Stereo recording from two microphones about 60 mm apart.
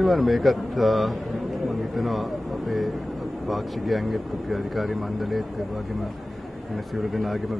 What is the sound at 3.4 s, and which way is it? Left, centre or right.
Speech, centre.